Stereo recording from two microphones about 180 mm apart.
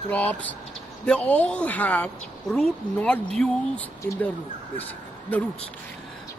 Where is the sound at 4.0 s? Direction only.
15° left (ahead or behind).